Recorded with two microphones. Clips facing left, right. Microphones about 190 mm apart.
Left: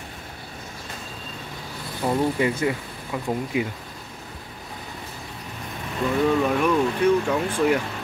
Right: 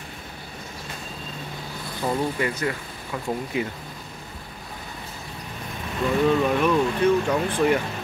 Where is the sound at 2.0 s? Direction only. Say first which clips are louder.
Left 3 dB; 15° left (ahead or behind).